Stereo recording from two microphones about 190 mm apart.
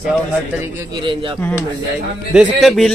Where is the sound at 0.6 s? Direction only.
20° right (ahead or behind).